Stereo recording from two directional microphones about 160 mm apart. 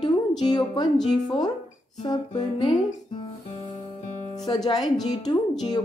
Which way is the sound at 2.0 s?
30° left (ahead or behind).